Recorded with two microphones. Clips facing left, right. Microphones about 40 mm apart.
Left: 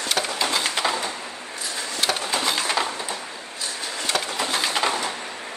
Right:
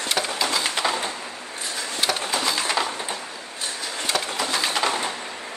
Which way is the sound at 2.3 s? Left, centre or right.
Left.